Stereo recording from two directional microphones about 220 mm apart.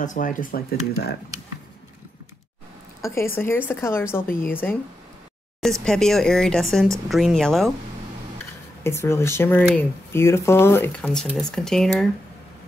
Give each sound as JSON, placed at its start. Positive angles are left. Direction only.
{"t": 0.0, "sound": "speech", "side_deg": 35}
{"t": 3.0, "sound": "speech", "side_deg": 10}
{"t": 8.8, "sound": "speech", "side_deg": 10}